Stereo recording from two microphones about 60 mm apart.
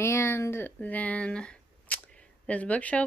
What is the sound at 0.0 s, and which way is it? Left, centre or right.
Speech, left.